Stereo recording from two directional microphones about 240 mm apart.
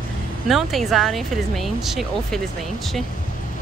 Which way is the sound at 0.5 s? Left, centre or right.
Centre.